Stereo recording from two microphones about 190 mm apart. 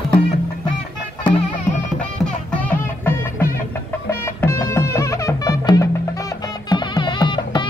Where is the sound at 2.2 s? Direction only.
10° left (ahead or behind).